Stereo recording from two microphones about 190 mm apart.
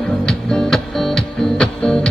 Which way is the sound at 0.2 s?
5° left (ahead or behind).